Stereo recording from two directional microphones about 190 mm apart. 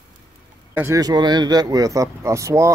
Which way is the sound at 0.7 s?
15° right (ahead or behind).